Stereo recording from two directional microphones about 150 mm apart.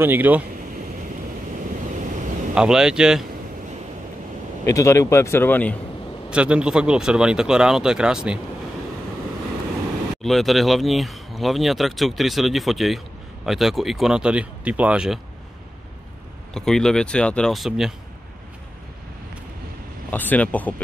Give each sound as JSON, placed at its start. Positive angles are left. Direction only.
{"t": 0.0, "sound": "speech", "side_deg": -10}
{"t": 2.0, "sound": "a sound", "side_deg": -60}
{"t": 2.5, "sound": "speech", "side_deg": -5}
{"t": 4.6, "sound": "speech", "side_deg": 20}
{"t": 6.3, "sound": "speech", "side_deg": -5}
{"t": 10.2, "sound": "speech", "side_deg": 0}
{"t": 16.5, "sound": "speech", "side_deg": 5}
{"t": 20.1, "sound": "speech", "side_deg": 10}